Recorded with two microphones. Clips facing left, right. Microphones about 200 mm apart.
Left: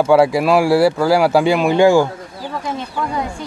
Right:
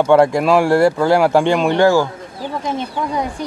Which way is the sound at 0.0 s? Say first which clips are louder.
Even; 5° left (ahead or behind).